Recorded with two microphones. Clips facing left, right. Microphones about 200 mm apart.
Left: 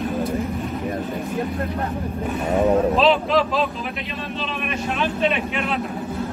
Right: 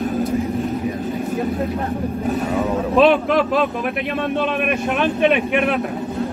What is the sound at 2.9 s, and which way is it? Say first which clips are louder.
Speech: right 3 dB; 55° right (ahead or behind).